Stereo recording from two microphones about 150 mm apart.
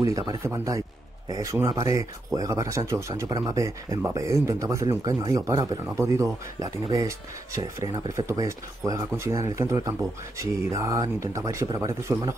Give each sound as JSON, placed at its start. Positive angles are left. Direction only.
{"t": 0.3, "sound": "speech", "side_deg": -20}